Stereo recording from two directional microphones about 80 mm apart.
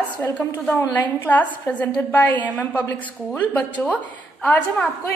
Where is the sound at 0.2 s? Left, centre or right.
Centre.